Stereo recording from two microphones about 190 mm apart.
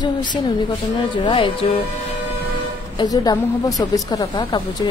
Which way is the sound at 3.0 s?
20° left (ahead or behind).